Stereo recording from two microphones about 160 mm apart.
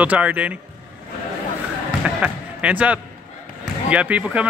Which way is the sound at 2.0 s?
10° right (ahead or behind).